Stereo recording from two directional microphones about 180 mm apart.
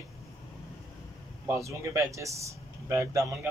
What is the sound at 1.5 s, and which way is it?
Speech, 15° right (ahead or behind).